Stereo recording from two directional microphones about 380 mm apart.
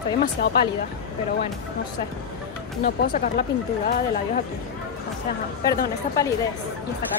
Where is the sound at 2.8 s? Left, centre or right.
Left.